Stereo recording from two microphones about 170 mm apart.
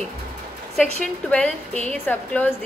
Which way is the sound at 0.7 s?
5° left (ahead or behind).